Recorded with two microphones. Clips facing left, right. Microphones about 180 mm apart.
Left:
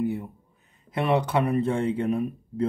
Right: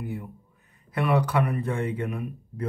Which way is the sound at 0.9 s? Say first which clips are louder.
Left 1 dB; 25° left (ahead or behind).